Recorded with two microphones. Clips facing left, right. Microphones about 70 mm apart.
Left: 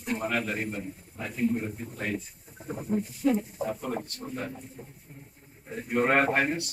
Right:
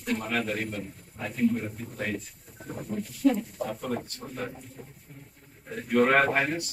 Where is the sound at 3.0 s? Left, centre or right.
Right.